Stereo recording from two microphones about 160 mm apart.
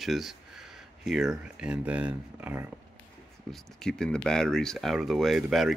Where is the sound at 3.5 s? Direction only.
5° left (ahead or behind).